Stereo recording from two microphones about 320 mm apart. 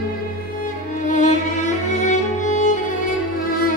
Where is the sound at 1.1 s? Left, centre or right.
Left.